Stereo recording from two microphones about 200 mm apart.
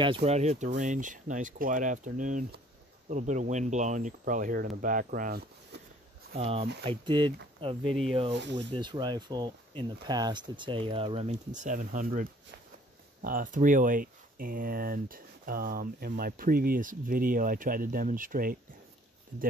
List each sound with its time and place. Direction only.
0.0 s speech: 30° right (ahead or behind); by 5.8 s 45° right (ahead or behind)
6.3 s speech: 30° right (ahead or behind)
8.4 s speech: 60° right (ahead or behind)
8.7 s speech: 20° right (ahead or behind); by 18.6 s 45° right (ahead or behind)